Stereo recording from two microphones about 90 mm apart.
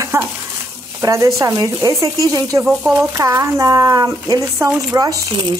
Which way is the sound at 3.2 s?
35° right (ahead or behind).